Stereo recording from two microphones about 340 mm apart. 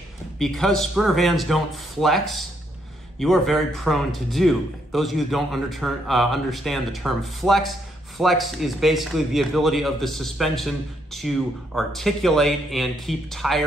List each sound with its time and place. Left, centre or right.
0.4 s a man's voice: centre